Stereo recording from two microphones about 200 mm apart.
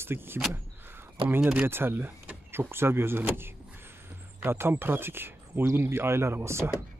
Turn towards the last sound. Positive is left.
turn(degrees=-15)  # may be behind; listen again after turning